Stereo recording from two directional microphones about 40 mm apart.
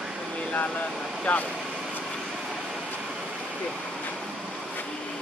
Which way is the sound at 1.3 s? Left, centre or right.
Left.